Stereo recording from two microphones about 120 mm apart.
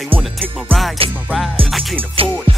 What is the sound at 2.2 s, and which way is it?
Music, 50° right (ahead or behind).